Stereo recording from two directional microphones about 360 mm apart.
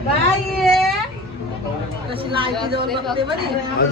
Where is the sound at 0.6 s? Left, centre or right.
Centre.